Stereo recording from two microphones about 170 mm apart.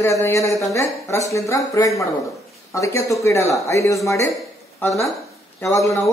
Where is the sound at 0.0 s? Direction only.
15° left (ahead or behind).